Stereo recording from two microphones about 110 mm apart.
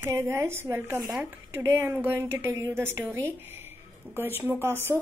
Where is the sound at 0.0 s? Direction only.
20° right (ahead or behind).